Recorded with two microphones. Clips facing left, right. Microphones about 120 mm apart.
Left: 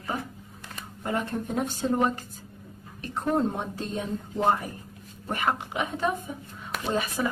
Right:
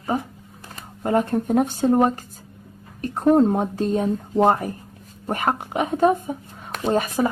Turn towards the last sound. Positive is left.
turn(degrees=-45)  # may be behind; listen again after turning